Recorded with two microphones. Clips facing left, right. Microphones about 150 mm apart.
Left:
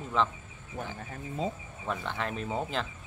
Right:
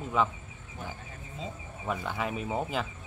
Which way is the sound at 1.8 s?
10° right (ahead or behind).